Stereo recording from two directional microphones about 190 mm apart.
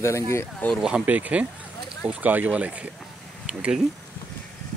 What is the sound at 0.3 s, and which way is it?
Speech, 10° left (ahead or behind).